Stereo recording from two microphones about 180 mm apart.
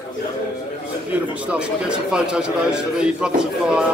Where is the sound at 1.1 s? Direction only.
5° right (ahead or behind).